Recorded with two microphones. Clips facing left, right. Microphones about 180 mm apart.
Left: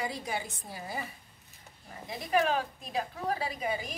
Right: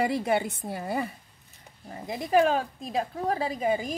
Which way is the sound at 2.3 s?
30° right (ahead or behind).